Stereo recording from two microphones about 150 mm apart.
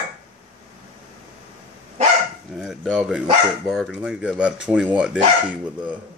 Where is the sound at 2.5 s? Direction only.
5° right (ahead or behind).